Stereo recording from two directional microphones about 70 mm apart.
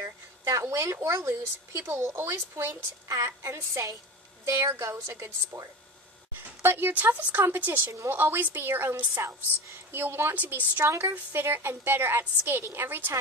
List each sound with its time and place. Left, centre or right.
0.5 s a woman's voice: right
4.6 s speech: right
4.9 s a woman's voice: right
5.2 s speech: right
6.4 s a woman's voice: right
7.9 s speech: right
8.2 s a woman's voice: right
9.1 s a woman's voice: right